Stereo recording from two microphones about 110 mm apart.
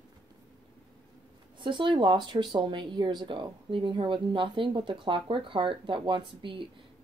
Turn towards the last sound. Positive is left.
turn(degrees=-50)  # may be behind; listen again after turning